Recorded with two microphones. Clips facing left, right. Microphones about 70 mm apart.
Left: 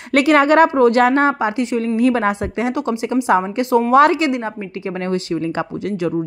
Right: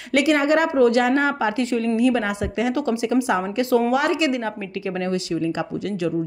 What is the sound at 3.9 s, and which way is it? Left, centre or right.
A woman's voice, left.